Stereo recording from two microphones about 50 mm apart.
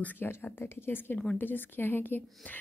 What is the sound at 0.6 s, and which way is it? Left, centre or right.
Speech, left.